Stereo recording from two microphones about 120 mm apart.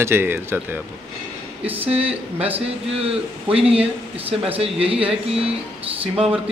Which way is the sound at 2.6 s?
55° right (ahead or behind).